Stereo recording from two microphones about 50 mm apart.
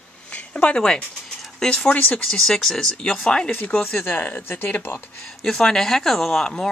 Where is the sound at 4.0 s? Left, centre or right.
Left.